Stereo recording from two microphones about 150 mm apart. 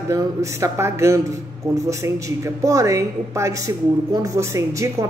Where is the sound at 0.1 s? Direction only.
20° right (ahead or behind).